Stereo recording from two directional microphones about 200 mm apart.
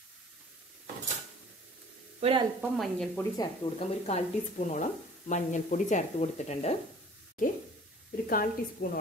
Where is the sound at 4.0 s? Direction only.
35° left (ahead or behind).